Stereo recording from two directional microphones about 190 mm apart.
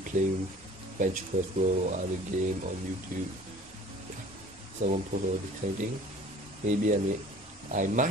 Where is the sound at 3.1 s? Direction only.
45° right (ahead or behind).